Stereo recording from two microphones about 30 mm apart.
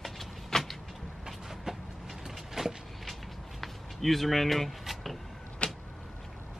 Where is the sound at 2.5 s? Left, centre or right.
Centre.